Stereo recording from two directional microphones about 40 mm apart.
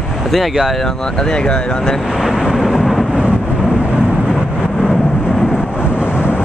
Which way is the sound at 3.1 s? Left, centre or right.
Right.